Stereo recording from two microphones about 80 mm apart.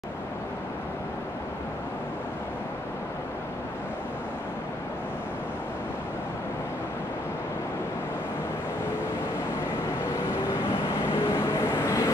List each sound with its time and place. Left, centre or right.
10.0 s vehicle: left